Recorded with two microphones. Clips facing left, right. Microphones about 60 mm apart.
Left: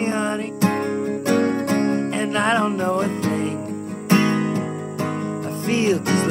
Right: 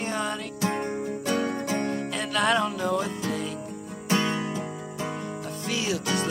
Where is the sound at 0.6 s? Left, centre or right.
Left.